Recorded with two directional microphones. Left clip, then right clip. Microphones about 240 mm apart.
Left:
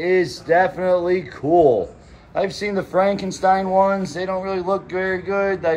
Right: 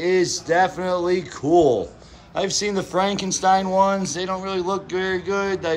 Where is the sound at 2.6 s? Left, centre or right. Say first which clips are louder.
Left 4 dB; centre.